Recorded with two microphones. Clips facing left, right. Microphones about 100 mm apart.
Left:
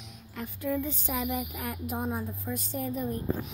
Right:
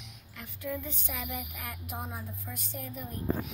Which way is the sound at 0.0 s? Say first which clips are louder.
Left 8 dB; 35° left (ahead or behind).